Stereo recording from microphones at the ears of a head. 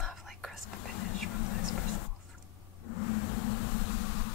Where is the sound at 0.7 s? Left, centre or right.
Left.